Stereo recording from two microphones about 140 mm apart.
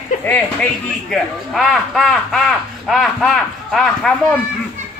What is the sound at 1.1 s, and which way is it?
Speech, centre (ahead or behind).